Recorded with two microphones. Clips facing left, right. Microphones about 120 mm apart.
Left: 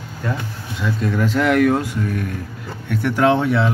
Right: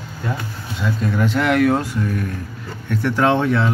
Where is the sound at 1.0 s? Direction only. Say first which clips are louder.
Left 1 dB; centre (ahead or behind).